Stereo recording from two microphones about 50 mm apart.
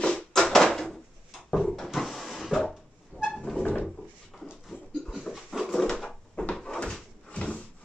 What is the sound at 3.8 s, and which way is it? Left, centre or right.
Drawer open or close, centre.